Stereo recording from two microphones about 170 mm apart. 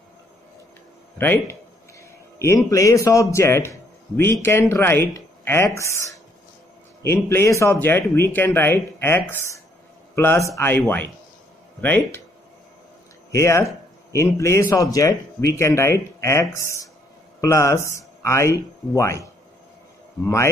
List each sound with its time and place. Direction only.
1.1 s a man's voice: 15° left (ahead or behind)
13.3 s speech: 15° left (ahead or behind)